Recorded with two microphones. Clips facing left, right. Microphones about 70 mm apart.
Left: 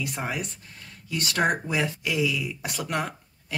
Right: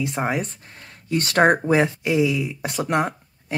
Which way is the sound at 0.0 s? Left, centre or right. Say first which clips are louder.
Right 7 dB; right.